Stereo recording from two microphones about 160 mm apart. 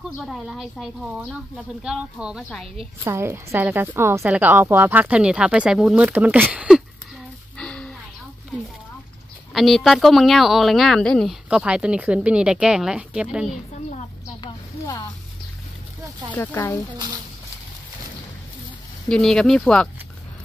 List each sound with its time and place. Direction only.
0.2 s speech: centre (ahead or behind)
3.0 s speech: 15° right (ahead or behind)
7.5 s a sound: 5° left (ahead or behind)
9.5 s speech: centre (ahead or behind)
11.4 s speech: 5° right (ahead or behind)
14.4 s a sound: 25° left (ahead or behind)
16.3 s speech: 15° left (ahead or behind)
19.0 s speech: 5° left (ahead or behind)